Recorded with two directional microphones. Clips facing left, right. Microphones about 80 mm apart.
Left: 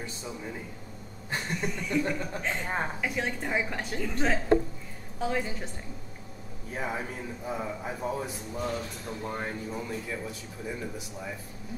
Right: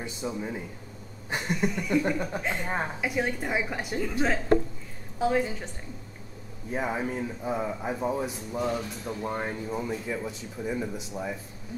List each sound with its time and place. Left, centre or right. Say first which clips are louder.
0.0 s speech: right 5 dB; centre
6.7 s a man's voice: right 4 dB; centre